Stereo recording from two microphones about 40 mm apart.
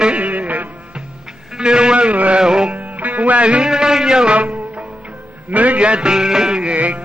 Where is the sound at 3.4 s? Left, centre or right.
Right.